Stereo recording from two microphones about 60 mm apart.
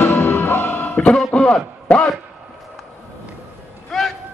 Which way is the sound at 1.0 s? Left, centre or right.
Centre.